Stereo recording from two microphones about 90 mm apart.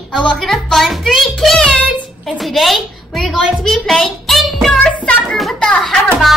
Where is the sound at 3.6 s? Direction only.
5° left (ahead or behind).